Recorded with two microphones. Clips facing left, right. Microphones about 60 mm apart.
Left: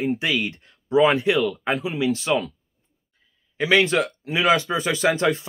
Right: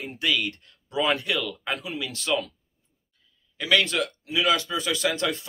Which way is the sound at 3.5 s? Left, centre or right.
Left.